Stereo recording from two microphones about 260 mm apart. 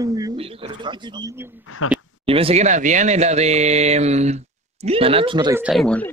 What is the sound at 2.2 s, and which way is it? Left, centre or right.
Speech, right.